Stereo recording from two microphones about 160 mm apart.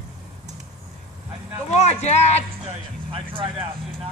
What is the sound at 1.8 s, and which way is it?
Speech, 45° left (ahead or behind).